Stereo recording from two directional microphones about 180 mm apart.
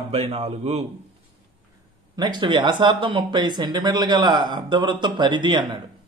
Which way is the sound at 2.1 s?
25° right (ahead or behind).